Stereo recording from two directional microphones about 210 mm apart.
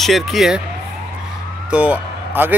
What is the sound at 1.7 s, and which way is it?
Speech, 5° right (ahead or behind).